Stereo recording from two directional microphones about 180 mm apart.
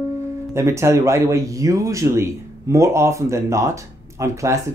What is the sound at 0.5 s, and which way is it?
Speech, 15° right (ahead or behind).